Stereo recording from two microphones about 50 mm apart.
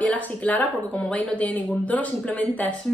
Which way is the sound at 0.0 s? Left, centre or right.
Left.